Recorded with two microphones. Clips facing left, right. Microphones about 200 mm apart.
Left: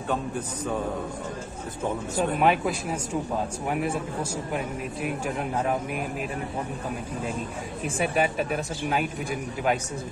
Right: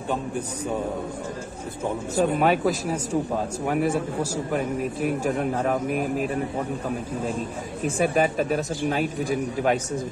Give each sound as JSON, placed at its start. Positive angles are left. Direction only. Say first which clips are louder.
{"t": 2.1, "sound": "speech", "louder": "right 3 dB", "side_deg": -40}
{"t": 7.8, "sound": "speech", "louder": "right 4 dB", "side_deg": -40}